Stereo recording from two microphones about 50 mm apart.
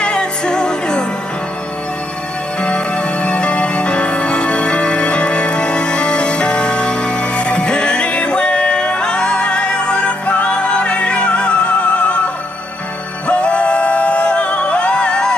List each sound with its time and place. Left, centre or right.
0.0 s music: centre
2.6 s music: left
13.3 s music: left